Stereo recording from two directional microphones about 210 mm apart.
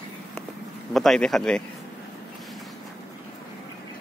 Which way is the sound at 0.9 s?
Centre (ahead or behind).